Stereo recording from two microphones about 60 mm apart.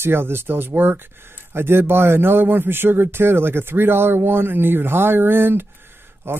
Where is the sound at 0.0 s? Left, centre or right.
Right.